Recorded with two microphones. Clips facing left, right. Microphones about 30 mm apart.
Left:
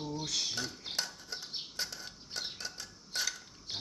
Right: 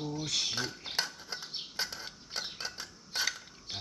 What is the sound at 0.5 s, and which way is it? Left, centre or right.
Dishes, right.